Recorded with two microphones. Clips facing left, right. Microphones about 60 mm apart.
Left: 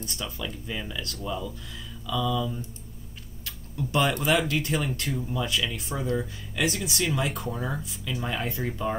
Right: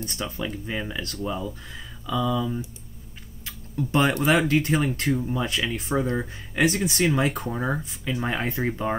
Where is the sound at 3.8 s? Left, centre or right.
Right.